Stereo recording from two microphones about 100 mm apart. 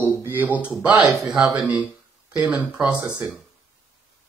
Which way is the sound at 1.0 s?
Centre (ahead or behind).